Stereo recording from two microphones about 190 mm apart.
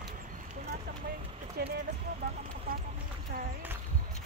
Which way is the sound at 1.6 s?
55° right (ahead or behind).